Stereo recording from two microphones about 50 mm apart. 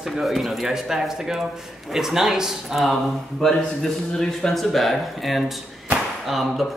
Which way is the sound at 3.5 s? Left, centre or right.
Centre.